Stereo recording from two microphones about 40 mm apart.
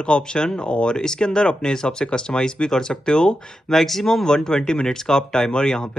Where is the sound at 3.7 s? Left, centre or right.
Centre.